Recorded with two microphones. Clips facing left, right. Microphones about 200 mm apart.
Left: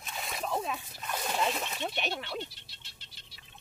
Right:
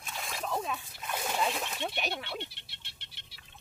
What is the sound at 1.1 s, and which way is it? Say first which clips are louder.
Speech: even; 5° right (ahead or behind).